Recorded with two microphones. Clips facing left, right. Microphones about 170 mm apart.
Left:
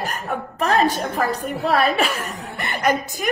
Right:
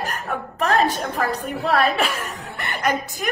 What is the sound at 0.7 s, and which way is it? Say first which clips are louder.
A woman's voice: left 3 dB; 10° left (ahead or behind).